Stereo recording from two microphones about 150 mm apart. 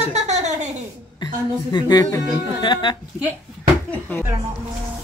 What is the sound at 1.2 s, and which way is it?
A woman's voice, 30° left (ahead or behind).